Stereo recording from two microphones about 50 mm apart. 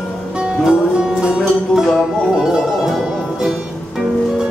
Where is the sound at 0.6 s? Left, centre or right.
Centre.